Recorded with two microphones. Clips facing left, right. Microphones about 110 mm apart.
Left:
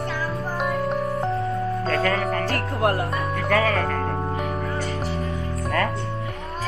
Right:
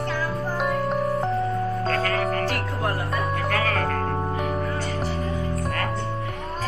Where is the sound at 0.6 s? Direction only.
Centre (ahead or behind).